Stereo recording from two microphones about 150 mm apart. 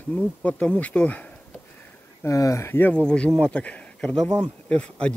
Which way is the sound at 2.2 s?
20° left (ahead or behind).